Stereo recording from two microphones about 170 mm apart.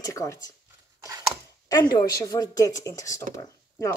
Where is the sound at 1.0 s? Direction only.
15° right (ahead or behind).